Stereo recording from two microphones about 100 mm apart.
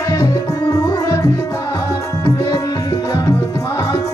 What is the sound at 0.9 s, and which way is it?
Music, 35° left (ahead or behind).